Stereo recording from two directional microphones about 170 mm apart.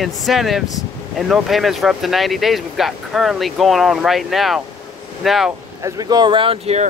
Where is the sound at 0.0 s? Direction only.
Centre (ahead or behind).